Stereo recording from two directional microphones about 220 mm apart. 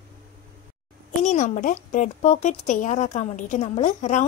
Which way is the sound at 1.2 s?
35° left (ahead or behind).